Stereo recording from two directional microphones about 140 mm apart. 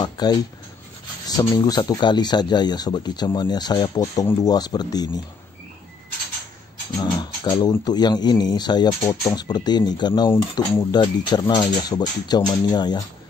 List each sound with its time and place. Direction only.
0.0 s speech: 30° left (ahead or behind)
1.5 s speech: 30° left (ahead or behind)
7.0 s speech: 25° left (ahead or behind)